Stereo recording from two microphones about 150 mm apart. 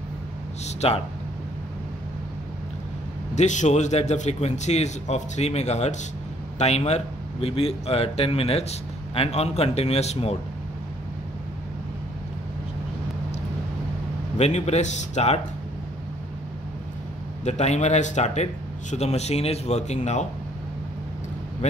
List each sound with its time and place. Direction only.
0.7 s speech: 45° left (ahead or behind)
3.3 s a man's voice: 50° left (ahead or behind)
14.4 s speech: 50° left (ahead or behind)
17.5 s speech: 50° left (ahead or behind)